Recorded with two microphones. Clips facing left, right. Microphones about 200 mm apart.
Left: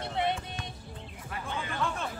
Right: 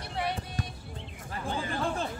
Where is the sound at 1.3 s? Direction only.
35° right (ahead or behind).